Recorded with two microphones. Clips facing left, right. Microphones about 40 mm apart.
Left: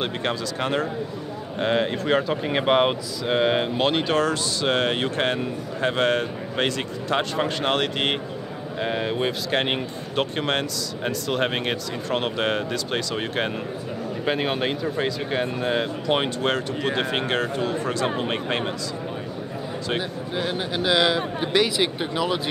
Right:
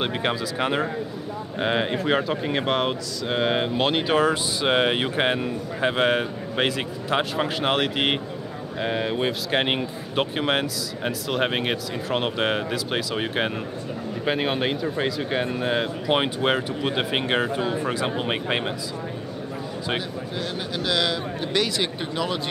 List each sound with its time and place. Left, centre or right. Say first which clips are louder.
0.0 s speech: right 1 dB; centre
20.0 s a man's voice: left 2 dB; centre